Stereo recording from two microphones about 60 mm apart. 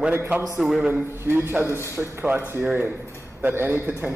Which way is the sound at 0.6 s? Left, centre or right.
Centre.